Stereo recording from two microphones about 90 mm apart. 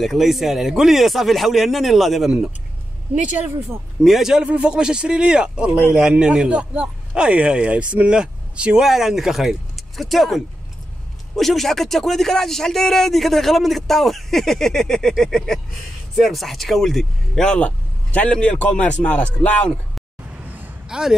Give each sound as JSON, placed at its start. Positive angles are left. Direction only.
{"t": 0.0, "sound": "speech", "side_deg": 0}
{"t": 20.3, "sound": "a sound", "side_deg": -20}
{"t": 20.9, "sound": "speech", "side_deg": -5}